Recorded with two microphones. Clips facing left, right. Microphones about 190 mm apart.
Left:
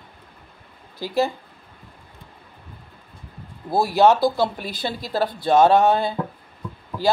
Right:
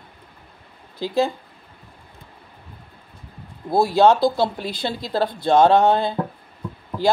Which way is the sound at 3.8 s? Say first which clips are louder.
Right 1 dB; 20° right (ahead or behind).